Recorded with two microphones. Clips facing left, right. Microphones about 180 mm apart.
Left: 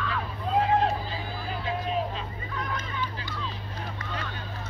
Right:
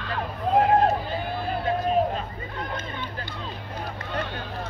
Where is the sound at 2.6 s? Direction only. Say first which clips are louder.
Right 1 dB; 30° right (ahead or behind).